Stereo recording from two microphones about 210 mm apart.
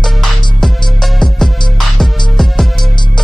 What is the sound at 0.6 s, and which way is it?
Music, centre (ahead or behind).